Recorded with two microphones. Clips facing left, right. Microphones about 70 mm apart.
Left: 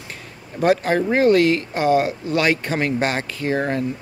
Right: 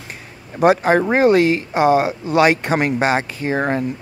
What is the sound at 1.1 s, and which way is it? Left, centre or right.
Speech, centre.